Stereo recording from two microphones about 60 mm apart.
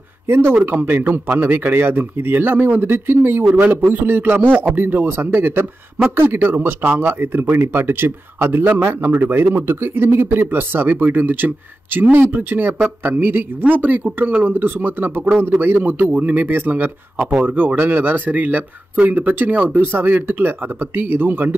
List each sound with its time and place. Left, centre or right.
0.3 s speech: right